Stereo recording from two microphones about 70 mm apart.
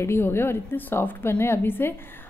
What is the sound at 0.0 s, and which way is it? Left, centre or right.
A woman's voice, left.